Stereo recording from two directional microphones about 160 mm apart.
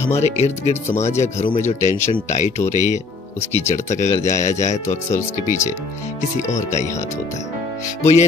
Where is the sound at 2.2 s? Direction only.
45° left (ahead or behind).